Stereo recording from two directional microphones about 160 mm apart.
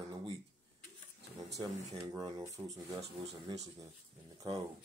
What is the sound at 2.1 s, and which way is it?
Speech, 20° right (ahead or behind).